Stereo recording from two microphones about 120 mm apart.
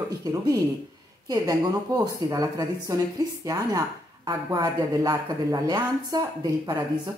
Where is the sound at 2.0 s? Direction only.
30° right (ahead or behind).